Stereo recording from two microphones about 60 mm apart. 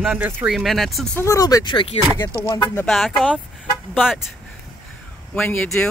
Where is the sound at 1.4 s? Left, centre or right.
Left.